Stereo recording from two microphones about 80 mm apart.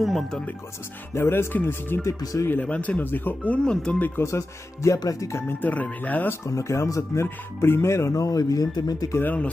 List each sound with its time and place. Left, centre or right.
0.0 s speech: centre
1.1 s speech: left
2.0 s speech: left
2.6 s speech: centre
4.2 s speech: left
5.5 s speech: left
6.4 s speech: left